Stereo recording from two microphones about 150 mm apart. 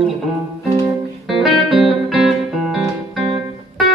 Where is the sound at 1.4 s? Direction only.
Centre (ahead or behind).